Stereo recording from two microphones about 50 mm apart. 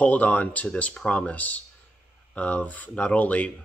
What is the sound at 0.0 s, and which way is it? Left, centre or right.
A man's voice, left.